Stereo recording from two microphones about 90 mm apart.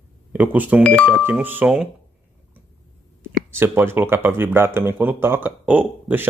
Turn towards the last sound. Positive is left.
turn(degrees=-20)  # may be behind; listen again after turning